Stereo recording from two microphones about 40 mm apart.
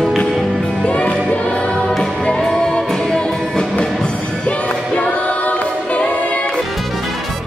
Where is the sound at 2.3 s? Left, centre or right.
Centre.